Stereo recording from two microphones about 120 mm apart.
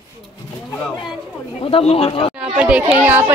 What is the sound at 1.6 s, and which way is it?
Speech, 55° left (ahead or behind).